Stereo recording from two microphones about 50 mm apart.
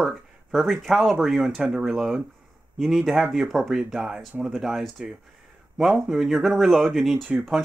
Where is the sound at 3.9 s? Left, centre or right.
Centre.